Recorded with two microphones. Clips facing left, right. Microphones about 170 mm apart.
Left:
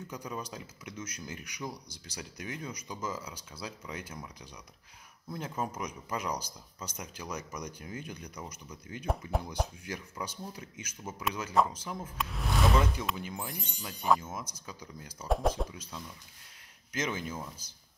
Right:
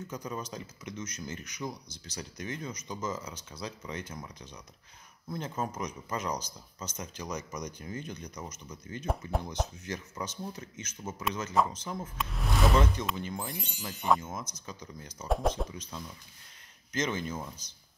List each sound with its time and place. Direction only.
0.1 s speech: 10° left (ahead or behind)
13.6 s speech: 10° right (ahead or behind)
13.8 s speech: centre (ahead or behind)